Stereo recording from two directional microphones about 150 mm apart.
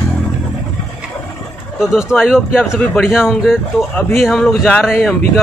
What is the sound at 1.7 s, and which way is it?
Speech, centre (ahead or behind).